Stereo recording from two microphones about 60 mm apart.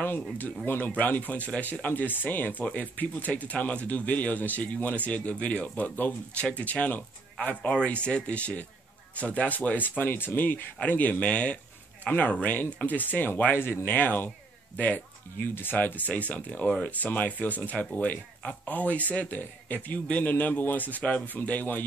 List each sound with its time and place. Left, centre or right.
0.7 s speech: left